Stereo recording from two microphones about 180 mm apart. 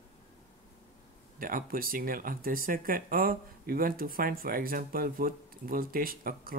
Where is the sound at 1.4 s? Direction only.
50° right (ahead or behind).